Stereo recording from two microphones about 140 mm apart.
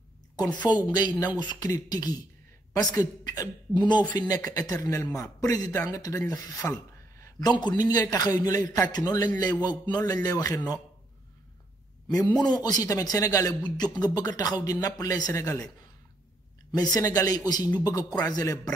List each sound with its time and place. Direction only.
0.7 s a man's voice: 30° left (ahead or behind)
12.4 s a man's voice: 30° left (ahead or behind)
16.7 s a man's voice: 25° left (ahead or behind)